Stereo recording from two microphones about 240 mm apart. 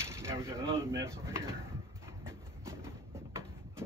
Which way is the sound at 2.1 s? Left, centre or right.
Centre.